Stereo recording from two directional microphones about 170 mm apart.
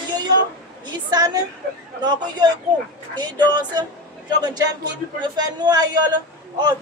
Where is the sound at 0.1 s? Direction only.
25° right (ahead or behind).